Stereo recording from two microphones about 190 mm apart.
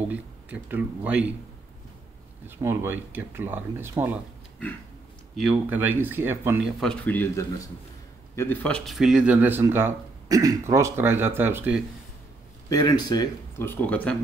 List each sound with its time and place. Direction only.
0.1 s speech: 10° right (ahead or behind)
2.4 s speech: 10° right (ahead or behind)
5.3 s speech: 5° right (ahead or behind)
6.8 s speech: 5° left (ahead or behind); by 11.8 s 10° right (ahead or behind)
12.6 s speech: 20° left (ahead or behind)